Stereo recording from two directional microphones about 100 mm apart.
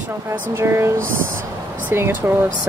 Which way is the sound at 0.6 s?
25° right (ahead or behind).